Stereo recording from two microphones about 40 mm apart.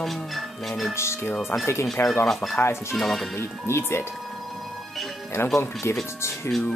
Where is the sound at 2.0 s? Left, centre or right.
Left.